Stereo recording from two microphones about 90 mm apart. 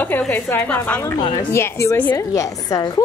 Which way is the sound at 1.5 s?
30° left (ahead or behind).